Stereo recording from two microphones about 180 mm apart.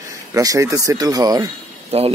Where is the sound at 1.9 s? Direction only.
35° right (ahead or behind).